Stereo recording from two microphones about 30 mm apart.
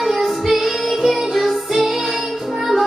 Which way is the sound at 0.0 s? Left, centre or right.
Centre.